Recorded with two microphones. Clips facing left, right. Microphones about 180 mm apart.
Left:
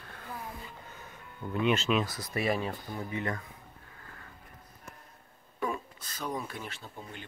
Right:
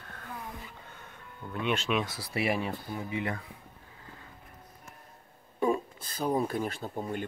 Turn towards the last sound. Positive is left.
turn(degrees=-50)  # may be behind; listen again after turning